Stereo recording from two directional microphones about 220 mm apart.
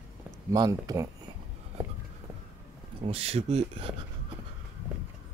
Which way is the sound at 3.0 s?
25° right (ahead or behind).